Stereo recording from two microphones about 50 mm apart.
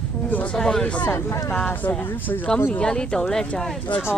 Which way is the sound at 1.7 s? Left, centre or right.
Left.